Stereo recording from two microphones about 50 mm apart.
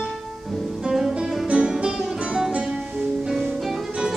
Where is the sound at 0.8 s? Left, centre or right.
Centre.